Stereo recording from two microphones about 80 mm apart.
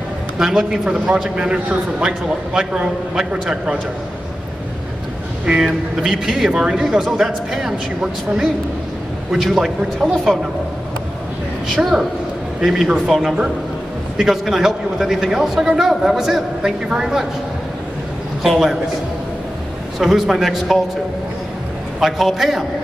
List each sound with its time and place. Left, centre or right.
0.4 s a man's voice: centre
0.8 s a man's voice: centre
5.5 s a man's voice: centre
11.7 s a man's voice: centre
18.4 s a man's voice: centre
20.0 s a man's voice: centre
22.0 s a man's voice: centre